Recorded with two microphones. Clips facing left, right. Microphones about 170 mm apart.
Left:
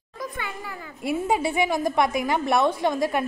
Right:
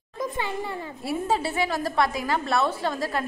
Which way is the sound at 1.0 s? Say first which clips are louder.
Left 3 dB; 15° left (ahead or behind).